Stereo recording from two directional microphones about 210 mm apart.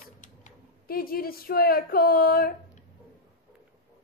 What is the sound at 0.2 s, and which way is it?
Speech, 40° left (ahead or behind).